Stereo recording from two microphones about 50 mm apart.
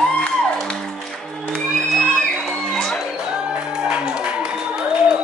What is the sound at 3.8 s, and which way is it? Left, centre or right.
Music, centre.